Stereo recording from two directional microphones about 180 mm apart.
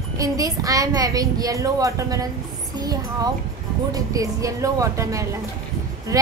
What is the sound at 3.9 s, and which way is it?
A woman's voice, 20° right (ahead or behind).